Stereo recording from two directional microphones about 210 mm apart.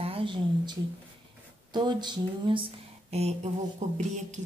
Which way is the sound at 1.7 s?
20° right (ahead or behind).